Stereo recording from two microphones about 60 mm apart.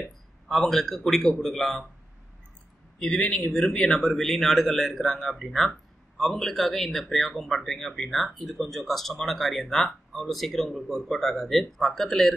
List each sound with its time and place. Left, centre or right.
0.5 s speech: centre
3.0 s speech: centre